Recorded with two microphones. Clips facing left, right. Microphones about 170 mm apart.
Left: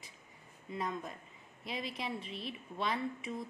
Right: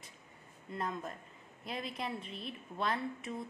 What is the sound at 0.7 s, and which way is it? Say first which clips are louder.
A woman's voice: even; centre (ahead or behind).